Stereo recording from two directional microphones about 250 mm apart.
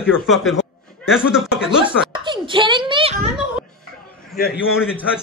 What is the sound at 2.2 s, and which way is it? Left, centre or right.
A woman's voice, centre.